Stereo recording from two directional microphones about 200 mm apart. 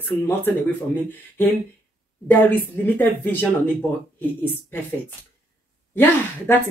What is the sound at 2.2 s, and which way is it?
Speech, 10° left (ahead or behind).